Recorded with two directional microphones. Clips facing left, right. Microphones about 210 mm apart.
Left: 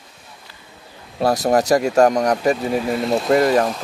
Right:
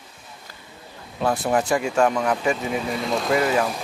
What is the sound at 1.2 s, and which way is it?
Speech, 40° left (ahead or behind).